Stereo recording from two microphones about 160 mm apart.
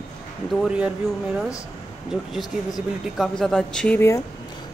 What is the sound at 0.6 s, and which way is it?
Speech, 5° right (ahead or behind).